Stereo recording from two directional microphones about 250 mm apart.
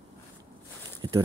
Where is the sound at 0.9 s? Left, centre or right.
Centre.